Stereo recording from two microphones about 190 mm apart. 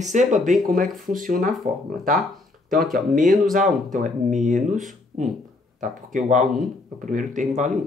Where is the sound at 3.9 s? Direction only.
40° right (ahead or behind).